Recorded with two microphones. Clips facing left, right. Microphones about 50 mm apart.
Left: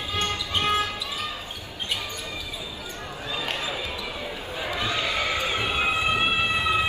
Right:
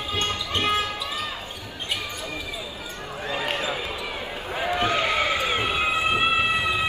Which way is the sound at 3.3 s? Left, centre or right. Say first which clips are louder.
Right 3 dB; right.